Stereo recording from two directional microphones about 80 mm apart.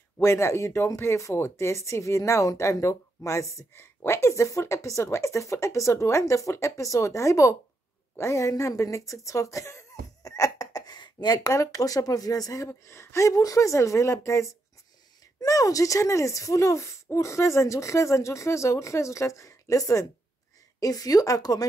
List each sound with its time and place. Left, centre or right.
0.2 s speech: left
10.9 s a sound: left
11.4 s speech: left
12.6 s speech: left